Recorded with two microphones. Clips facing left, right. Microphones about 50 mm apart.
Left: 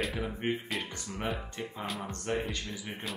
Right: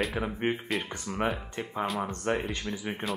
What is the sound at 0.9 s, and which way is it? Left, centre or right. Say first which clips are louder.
Speech: right 5 dB; right.